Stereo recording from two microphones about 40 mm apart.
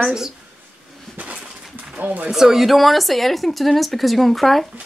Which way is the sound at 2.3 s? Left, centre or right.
Centre.